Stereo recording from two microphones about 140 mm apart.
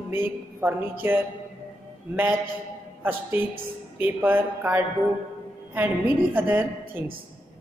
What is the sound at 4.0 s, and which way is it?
A man's voice, 15° right (ahead or behind).